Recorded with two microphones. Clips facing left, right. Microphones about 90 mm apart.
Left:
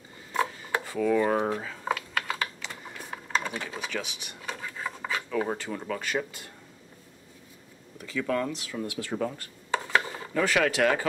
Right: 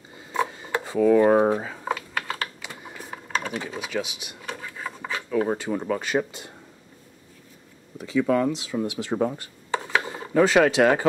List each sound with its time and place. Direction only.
0.3 s rub: 20° right (ahead or behind)
0.7 s speech: 25° right (ahead or behind)
1.9 s typing: 5° right (ahead or behind)
3.7 s a sound: 10° right (ahead or behind)
5.6 s speech: 20° right (ahead or behind)
8.0 s speech: 20° right (ahead or behind)
10.0 s a sound: 20° right (ahead or behind)
10.3 s speech: 25° right (ahead or behind)